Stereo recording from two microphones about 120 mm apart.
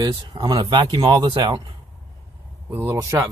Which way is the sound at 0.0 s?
40° right (ahead or behind).